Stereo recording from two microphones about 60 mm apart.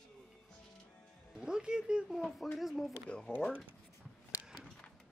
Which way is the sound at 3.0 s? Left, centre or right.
Centre.